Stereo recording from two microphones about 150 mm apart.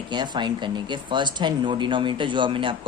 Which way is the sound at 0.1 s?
30° right (ahead or behind).